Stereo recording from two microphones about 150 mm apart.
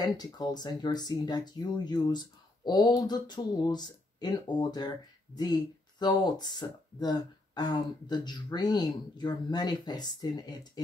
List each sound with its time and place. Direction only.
0.0 s speech: 25° left (ahead or behind)